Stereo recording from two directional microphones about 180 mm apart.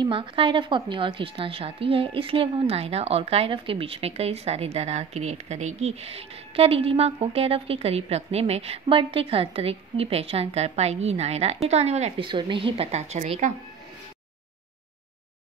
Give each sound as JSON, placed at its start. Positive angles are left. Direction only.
{"t": 0.0, "sound": "a woman's voice", "side_deg": -30}